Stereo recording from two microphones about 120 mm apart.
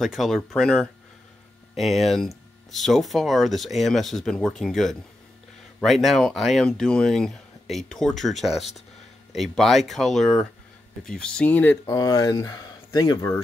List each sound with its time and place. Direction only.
0.0 s speech: centre (ahead or behind)
11.8 s speech: 30° left (ahead or behind)